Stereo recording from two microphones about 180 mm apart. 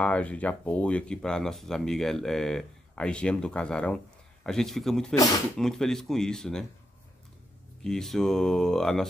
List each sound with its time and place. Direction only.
0.0 s speech: 5° left (ahead or behind)
7.8 s speech: centre (ahead or behind)